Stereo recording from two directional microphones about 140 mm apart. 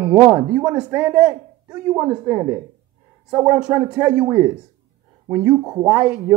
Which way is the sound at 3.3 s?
25° right (ahead or behind).